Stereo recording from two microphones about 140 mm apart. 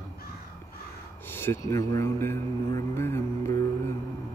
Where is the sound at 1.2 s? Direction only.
15° left (ahead or behind).